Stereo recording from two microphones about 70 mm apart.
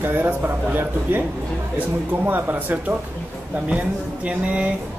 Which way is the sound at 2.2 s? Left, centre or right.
Right.